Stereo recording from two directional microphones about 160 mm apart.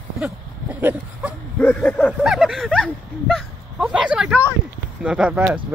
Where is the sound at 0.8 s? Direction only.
10° right (ahead or behind).